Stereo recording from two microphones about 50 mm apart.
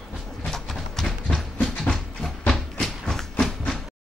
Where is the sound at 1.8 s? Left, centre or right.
Centre.